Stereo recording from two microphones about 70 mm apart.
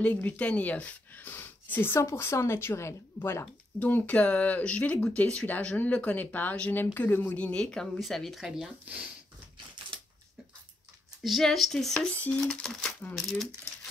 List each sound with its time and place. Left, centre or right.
0.0 s speech: left
3.8 s speech: left
7.3 s speech: centre
11.2 s speech: centre
12.1 s speech: centre